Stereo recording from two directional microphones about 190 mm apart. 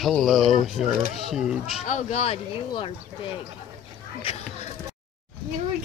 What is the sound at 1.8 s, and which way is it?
Speech, 35° left (ahead or behind).